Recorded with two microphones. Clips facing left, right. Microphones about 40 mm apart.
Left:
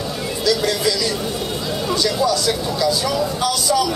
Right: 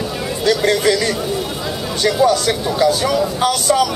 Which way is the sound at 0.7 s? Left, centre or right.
Right.